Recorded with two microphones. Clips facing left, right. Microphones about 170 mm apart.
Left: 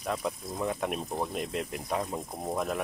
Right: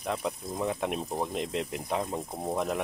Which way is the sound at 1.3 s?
20° right (ahead or behind).